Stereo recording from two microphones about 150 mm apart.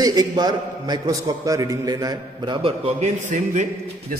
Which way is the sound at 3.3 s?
55° right (ahead or behind).